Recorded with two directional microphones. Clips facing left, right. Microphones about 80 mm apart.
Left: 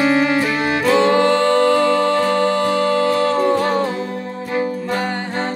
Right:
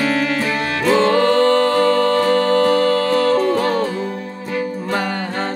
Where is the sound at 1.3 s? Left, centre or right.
Right.